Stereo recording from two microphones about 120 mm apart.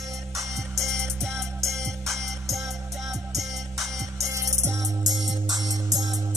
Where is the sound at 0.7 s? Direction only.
5° left (ahead or behind).